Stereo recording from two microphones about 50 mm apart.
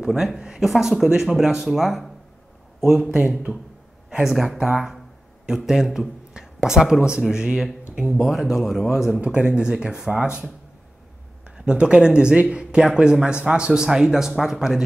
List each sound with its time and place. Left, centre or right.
0.0 s a man's voice: centre
0.4 s a sound: centre
0.7 s speech: centre
3.0 s speech: centre
4.2 s a man's voice: centre
9.2 s speech: right
11.5 s a man's voice: centre